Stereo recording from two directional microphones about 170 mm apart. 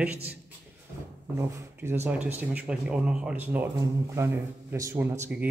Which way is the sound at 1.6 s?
15° right (ahead or behind).